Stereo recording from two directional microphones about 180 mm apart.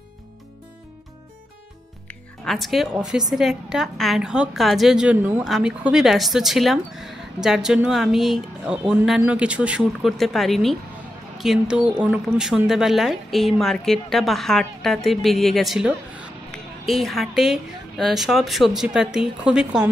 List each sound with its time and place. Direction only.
2.0 s music: centre (ahead or behind)
3.1 s a woman's voice: centre (ahead or behind)